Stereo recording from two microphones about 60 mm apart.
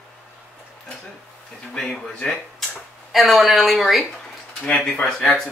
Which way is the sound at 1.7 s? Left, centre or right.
Centre.